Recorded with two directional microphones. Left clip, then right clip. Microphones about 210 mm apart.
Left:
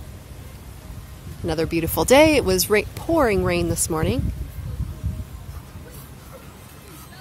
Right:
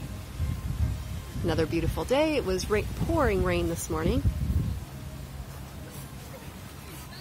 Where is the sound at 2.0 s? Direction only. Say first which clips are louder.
Left 12 dB; 30° left (ahead or behind).